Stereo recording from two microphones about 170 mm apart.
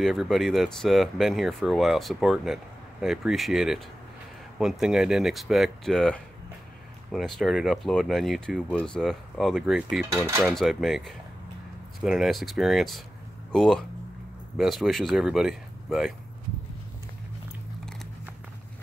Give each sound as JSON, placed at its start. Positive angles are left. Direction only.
{"t": 0.0, "sound": "speech", "side_deg": 0}
{"t": 10.1, "sound": "cutlery", "side_deg": -15}
{"t": 10.5, "sound": "speech", "side_deg": 0}